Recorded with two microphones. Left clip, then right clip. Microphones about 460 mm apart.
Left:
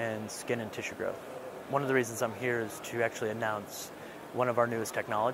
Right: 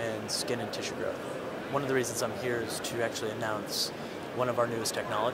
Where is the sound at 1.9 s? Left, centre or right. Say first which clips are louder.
Even; left.